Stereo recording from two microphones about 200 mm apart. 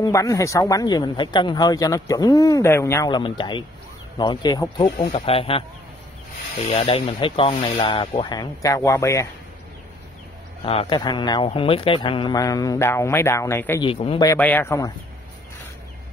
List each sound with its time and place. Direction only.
0.0 s speech: 15° left (ahead or behind)
6.7 s speech: 30° left (ahead or behind); by 9.3 s 15° left (ahead or behind)
10.6 s speech: 30° left (ahead or behind); by 13.8 s 10° left (ahead or behind)
13.8 s speech: 25° left (ahead or behind)